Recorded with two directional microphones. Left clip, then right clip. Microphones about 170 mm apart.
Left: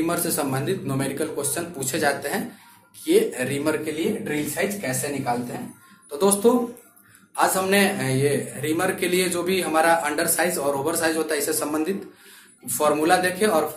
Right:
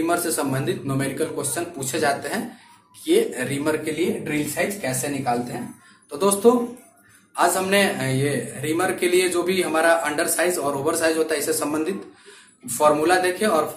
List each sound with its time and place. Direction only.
0.0 s a man's voice: 15° left (ahead or behind)